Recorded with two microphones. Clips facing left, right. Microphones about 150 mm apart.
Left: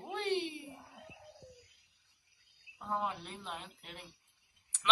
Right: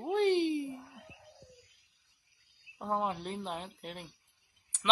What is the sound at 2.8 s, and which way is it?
Speech, 40° right (ahead or behind).